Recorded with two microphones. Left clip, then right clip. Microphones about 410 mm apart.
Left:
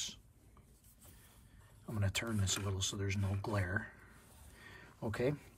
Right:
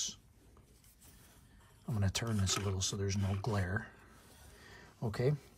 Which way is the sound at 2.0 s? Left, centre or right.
Centre.